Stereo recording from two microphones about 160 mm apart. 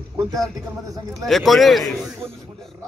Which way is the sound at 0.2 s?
20° right (ahead or behind).